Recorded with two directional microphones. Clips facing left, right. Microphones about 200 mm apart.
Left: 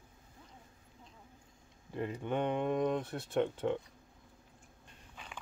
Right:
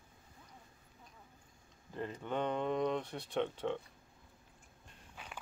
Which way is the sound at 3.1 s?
45° left (ahead or behind).